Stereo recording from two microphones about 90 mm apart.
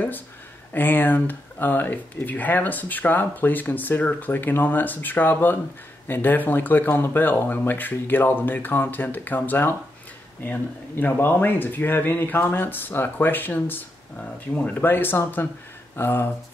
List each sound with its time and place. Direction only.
0.7 s speech: 20° left (ahead or behind)